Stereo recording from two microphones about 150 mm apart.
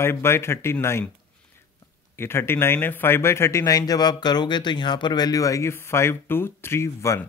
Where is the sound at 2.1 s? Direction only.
15° left (ahead or behind).